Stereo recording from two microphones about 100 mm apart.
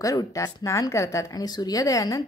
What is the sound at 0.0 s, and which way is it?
A woman's voice, 35° left (ahead or behind).